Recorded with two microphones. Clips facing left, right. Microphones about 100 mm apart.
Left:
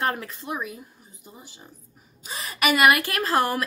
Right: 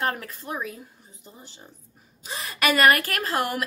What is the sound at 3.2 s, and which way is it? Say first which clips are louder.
Speech: left 4 dB; 30° left (ahead or behind).